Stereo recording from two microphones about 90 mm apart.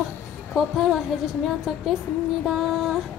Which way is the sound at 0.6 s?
5° right (ahead or behind).